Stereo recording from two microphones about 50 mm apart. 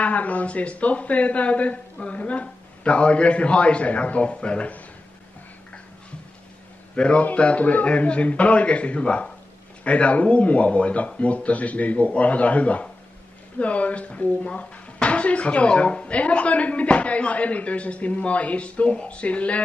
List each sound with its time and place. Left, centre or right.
0.0 s speech: left
7.0 s speech: left